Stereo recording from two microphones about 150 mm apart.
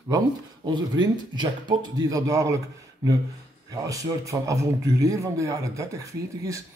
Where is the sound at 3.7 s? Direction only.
20° right (ahead or behind).